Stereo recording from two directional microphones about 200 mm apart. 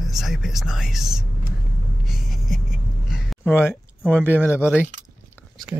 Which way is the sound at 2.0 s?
Centre (ahead or behind).